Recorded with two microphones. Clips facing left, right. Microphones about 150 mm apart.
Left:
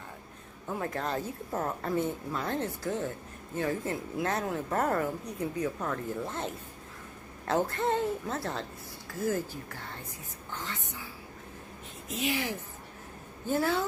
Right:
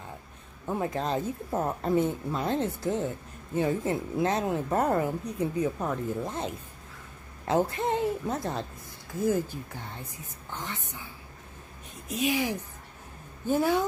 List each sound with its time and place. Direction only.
0.7 s a woman's voice: 20° right (ahead or behind)
12.1 s a woman's voice: 15° right (ahead or behind)